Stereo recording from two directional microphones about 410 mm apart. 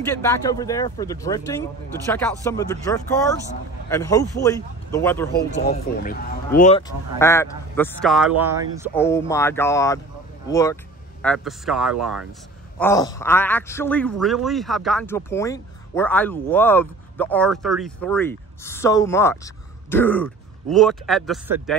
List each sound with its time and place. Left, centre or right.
0.2 s speech: centre
5.3 s speech: left; by 8.9 s centre
8.9 s speech: centre